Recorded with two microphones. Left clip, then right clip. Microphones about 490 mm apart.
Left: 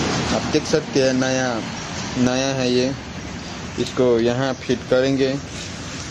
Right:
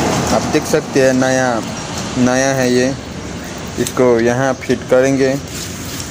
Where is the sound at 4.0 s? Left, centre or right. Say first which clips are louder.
Right 5 dB; left.